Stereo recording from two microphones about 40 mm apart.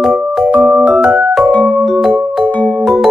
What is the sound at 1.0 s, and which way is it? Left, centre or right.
Music, right.